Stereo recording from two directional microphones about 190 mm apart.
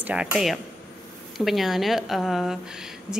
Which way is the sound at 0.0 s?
5° right (ahead or behind).